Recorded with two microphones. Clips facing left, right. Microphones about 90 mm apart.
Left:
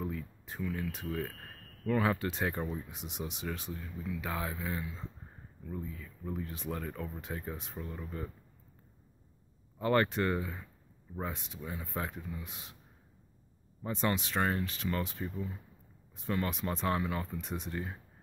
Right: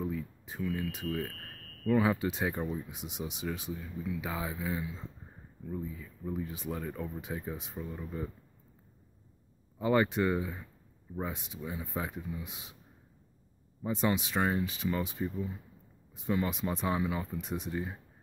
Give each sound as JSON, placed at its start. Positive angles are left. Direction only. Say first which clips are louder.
{"t": 0.0, "sound": "a sound", "louder": "right 3 dB", "side_deg": -5}
{"t": 1.0, "sound": "speech", "louder": "right 2 dB", "side_deg": 5}
{"t": 9.8, "sound": "speech", "louder": "right 1 dB", "side_deg": -10}
{"t": 13.8, "sound": "speech", "louder": "right 2 dB", "side_deg": -10}